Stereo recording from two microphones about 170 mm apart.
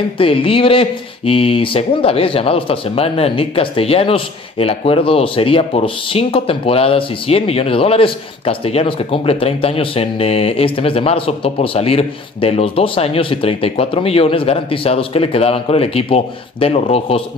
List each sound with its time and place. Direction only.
0.2 s speech: 30° left (ahead or behind)